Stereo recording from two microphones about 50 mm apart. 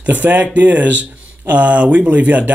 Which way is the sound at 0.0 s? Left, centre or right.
Right.